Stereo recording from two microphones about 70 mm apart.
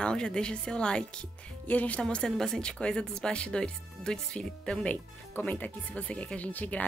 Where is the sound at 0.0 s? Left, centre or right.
Centre.